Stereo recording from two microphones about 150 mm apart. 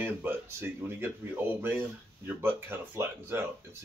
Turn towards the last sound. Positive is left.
turn(degrees=-15)  # may be behind; listen again after turning